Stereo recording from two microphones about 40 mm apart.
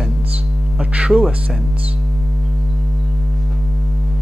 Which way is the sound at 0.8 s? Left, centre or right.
Right.